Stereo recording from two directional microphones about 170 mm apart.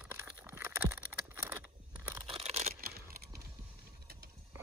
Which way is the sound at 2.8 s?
65° right (ahead or behind).